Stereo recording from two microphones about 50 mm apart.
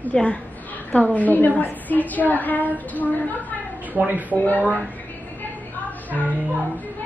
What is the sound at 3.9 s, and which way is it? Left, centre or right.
Speech, right.